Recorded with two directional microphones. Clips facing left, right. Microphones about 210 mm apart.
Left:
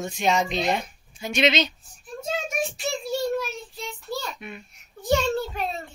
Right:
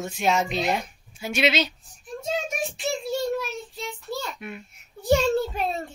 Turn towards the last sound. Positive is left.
turn(degrees=-40)  # may be behind; listen again after turning